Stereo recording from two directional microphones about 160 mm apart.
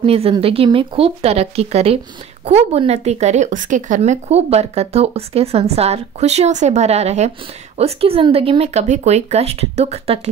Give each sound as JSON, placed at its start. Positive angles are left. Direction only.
{"t": 0.0, "sound": "speech", "side_deg": -35}